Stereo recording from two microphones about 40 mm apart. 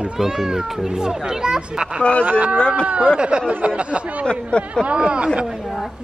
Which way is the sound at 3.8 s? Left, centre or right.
Right.